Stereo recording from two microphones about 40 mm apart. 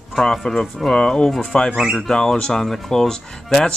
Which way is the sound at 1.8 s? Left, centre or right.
Centre.